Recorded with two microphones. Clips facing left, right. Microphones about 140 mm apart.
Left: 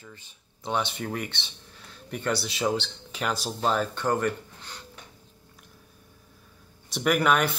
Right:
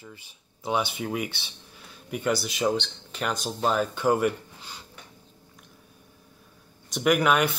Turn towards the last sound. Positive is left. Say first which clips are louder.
# right 1 dB
turn(degrees=0)  # may be behind; listen again after turning